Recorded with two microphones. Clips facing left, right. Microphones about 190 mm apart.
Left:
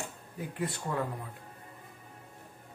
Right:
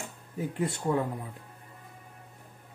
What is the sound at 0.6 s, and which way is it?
Speech, 25° right (ahead or behind).